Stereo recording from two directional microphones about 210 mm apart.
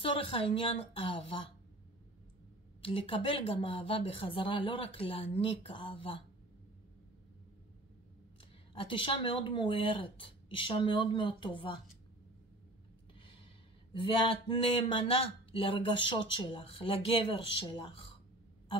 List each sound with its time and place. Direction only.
0.0 s speech: 25° left (ahead or behind)
2.8 s speech: 25° left (ahead or behind)
8.7 s speech: 25° left (ahead or behind)
13.9 s speech: 25° left (ahead or behind)